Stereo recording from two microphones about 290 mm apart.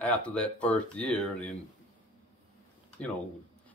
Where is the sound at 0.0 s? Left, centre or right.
Centre.